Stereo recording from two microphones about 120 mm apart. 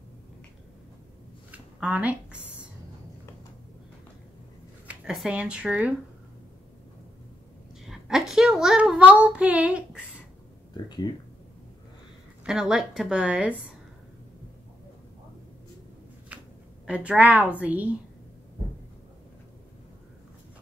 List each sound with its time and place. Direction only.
1.5 s a sound: 10° right (ahead or behind)
4.8 s speech: 5° right (ahead or behind)
7.8 s child singing: 5° right (ahead or behind)
11.1 s speech: 35° left (ahead or behind)
12.4 s a woman's voice: 5° right (ahead or behind)
16.3 s a sound: 10° right (ahead or behind)
16.8 s a woman's voice: 10° right (ahead or behind)